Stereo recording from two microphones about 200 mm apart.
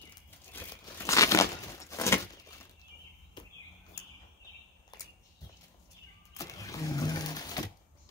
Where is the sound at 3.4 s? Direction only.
25° left (ahead or behind).